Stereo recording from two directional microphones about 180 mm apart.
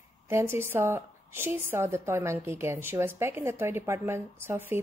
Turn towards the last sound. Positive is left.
turn(degrees=-10)  # may be behind; listen again after turning